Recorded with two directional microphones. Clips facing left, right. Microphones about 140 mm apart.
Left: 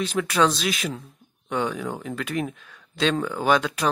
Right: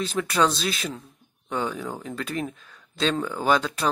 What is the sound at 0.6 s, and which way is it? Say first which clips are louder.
Speech: left 2 dB; 35° right (ahead or behind).